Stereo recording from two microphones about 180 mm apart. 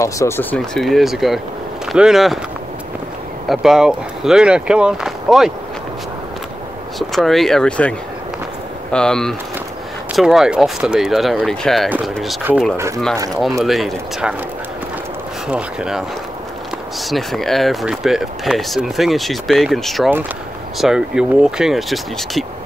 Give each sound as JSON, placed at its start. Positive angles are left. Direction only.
{"t": 0.0, "sound": "speech", "side_deg": 15}
{"t": 3.4, "sound": "speech", "side_deg": 0}
{"t": 7.0, "sound": "speech", "side_deg": 0}
{"t": 8.9, "sound": "speech", "side_deg": 5}
{"t": 12.7, "sound": "speech", "side_deg": -15}
{"t": 13.7, "sound": "speech", "side_deg": 0}
{"t": 15.4, "sound": "speech", "side_deg": -5}
{"t": 17.1, "sound": "speech", "side_deg": 0}